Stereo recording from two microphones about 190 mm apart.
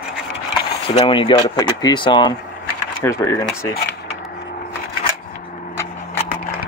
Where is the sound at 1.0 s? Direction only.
25° left (ahead or behind).